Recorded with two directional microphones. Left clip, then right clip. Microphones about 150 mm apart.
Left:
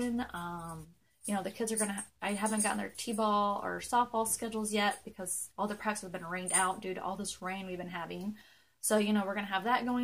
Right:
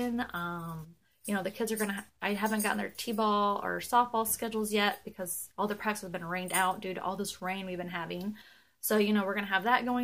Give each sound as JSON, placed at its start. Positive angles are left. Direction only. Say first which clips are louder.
{"t": 0.0, "sound": "a woman's voice", "louder": "right 3 dB", "side_deg": -5}